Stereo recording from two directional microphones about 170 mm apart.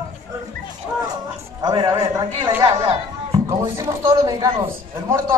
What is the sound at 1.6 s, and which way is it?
A man's voice, 25° right (ahead or behind).